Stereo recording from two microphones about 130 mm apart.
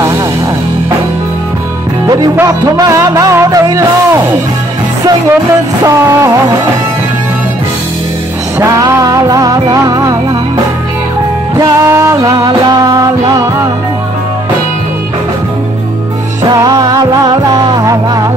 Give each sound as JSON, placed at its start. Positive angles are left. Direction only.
{"t": 2.4, "sound": "music", "side_deg": -25}
{"t": 8.5, "sound": "music", "side_deg": -25}
{"t": 11.5, "sound": "music", "side_deg": -20}
{"t": 16.5, "sound": "music", "side_deg": -30}